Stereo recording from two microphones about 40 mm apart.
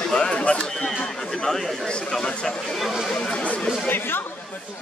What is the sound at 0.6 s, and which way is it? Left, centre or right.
Speech, centre.